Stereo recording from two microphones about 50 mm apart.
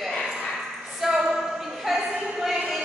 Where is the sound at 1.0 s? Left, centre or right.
Centre.